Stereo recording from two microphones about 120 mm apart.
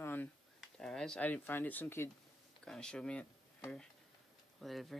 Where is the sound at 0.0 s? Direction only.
15° left (ahead or behind).